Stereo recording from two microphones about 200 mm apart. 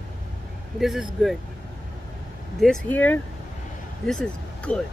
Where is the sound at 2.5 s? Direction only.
5° left (ahead or behind).